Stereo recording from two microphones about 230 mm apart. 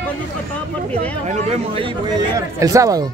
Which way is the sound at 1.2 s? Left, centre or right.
Right.